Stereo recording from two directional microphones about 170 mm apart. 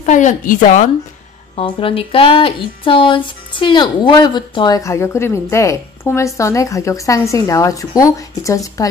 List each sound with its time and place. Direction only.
0.0 s a woman's voice: 45° left (ahead or behind)
1.5 s speech: 30° left (ahead or behind)